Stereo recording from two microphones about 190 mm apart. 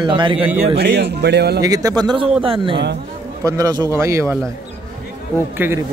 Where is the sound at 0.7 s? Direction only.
60° right (ahead or behind).